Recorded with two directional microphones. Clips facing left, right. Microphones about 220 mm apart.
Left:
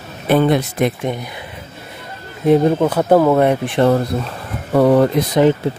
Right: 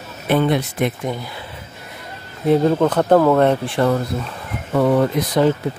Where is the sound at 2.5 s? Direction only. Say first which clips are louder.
Left 2 dB; 15° left (ahead or behind).